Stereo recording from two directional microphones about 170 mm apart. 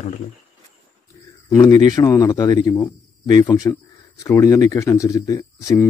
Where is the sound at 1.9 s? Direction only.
25° left (ahead or behind).